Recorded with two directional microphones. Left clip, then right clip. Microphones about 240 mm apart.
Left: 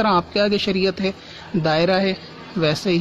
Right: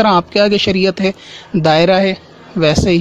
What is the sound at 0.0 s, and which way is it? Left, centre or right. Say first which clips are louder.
Speech: right 7 dB; right.